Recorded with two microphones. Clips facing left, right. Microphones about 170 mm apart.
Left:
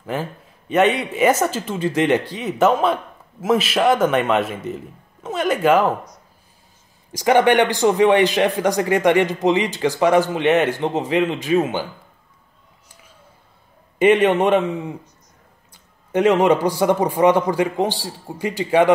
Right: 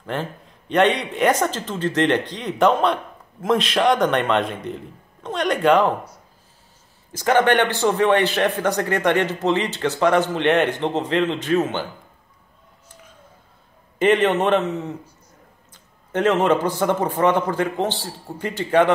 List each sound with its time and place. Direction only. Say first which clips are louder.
0.0 s speech: left 1 dB; 5° left (ahead or behind)
7.1 s a man's voice: left 2 dB; 10° left (ahead or behind)
13.9 s a man's voice: left 3 dB; 10° left (ahead or behind)